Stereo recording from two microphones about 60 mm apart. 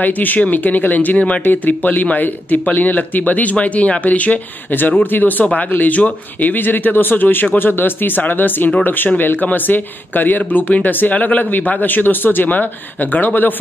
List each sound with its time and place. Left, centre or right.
0.0 s speech: left